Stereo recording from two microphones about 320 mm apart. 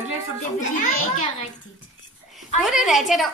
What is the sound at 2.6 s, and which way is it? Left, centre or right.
Speech, centre.